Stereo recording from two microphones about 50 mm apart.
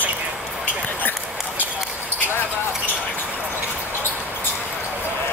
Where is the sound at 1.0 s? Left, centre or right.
Left.